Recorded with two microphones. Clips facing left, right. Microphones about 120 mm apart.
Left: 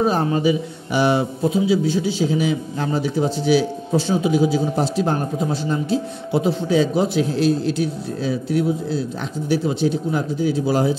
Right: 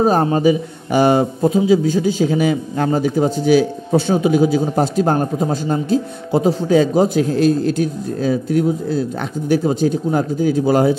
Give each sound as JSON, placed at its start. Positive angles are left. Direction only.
{"t": 0.0, "sound": "a man's voice", "side_deg": -40}